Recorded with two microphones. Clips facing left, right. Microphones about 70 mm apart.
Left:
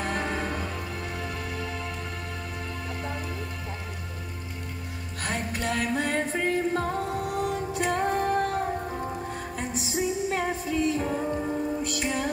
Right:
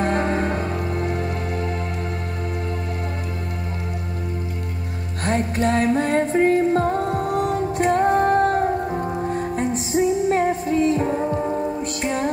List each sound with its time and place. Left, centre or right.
0.0 s music: right
5.2 s music: right